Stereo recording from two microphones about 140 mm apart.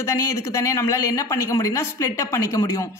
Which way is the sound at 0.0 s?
20° left (ahead or behind).